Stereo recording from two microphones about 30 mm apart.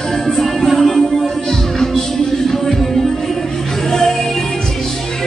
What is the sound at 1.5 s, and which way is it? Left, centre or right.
Music, centre.